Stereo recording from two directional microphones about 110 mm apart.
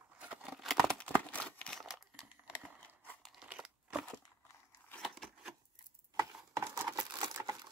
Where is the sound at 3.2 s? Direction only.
10° right (ahead or behind).